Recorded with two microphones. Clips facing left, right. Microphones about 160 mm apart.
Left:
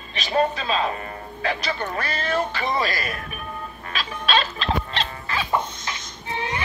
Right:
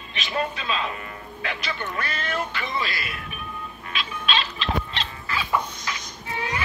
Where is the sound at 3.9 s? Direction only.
40° left (ahead or behind).